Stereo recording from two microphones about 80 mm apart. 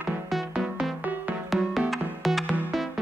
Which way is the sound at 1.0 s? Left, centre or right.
Centre.